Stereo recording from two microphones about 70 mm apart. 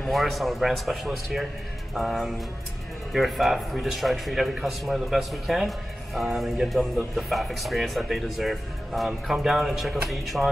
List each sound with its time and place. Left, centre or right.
0.1 s speech: centre